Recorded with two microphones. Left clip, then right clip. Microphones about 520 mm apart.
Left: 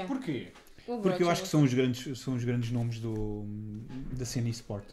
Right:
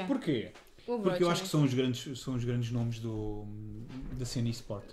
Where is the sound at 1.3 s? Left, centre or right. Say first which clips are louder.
Left 3 dB; left.